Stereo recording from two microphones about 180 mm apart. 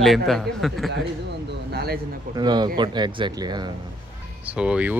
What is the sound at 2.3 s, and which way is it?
Speech, 25° right (ahead or behind).